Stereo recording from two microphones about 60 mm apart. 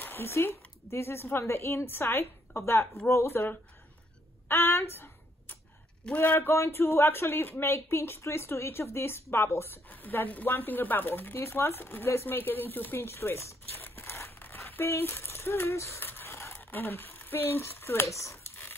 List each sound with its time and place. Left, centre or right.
0.0 s a woman's voice: left
4.5 s a sound: left
6.0 s speech: left
6.5 s speech: left
7.7 s a woman's voice: left
9.8 s speech: left
13.8 s tearing: left
14.7 s a woman's voice: left
16.0 s a sound: left